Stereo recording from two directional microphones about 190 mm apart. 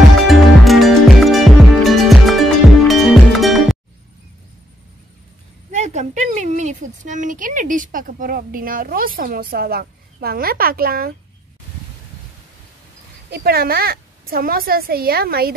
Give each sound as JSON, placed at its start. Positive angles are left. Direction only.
{"t": 0.3, "sound": "music", "side_deg": 0}
{"t": 5.7, "sound": "speech", "side_deg": -40}
{"t": 13.3, "sound": "a woman's voice", "side_deg": -55}